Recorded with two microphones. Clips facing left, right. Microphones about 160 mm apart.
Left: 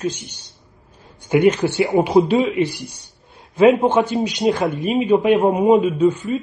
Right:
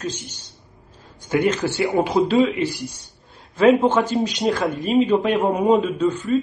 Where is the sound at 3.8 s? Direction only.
15° left (ahead or behind).